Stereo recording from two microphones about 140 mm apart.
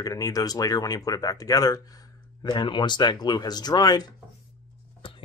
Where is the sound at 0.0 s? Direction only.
25° left (ahead or behind).